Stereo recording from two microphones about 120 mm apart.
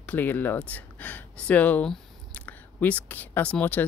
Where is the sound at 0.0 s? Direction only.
15° left (ahead or behind).